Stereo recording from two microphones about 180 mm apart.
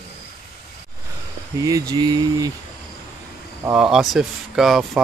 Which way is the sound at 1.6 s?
20° right (ahead or behind).